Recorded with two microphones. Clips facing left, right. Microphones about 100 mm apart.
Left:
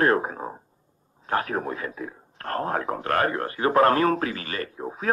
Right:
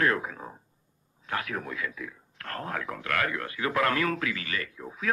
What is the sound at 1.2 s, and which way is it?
Speech, 35° left (ahead or behind).